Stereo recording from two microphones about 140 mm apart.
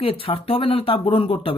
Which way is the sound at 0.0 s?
40° left (ahead or behind).